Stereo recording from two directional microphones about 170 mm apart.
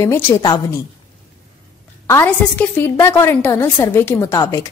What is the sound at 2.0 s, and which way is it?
A woman's voice, 15° left (ahead or behind).